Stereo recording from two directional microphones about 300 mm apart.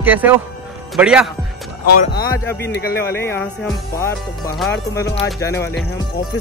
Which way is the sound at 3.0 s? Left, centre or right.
Centre.